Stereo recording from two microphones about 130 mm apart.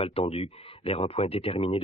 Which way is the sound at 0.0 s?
45° left (ahead or behind).